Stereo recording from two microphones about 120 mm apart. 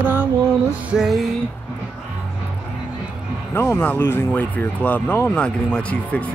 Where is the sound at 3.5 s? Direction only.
20° left (ahead or behind).